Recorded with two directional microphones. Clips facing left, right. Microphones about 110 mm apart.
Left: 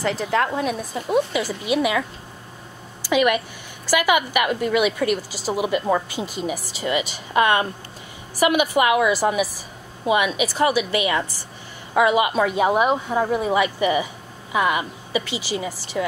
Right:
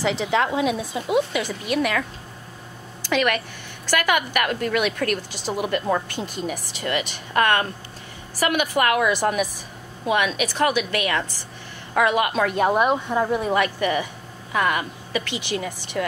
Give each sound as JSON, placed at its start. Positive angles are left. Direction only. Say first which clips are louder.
{"t": 0.0, "sound": "a woman's voice", "louder": "even", "side_deg": 0}
{"t": 15.2, "sound": "speech", "louder": "left 1 dB", "side_deg": -60}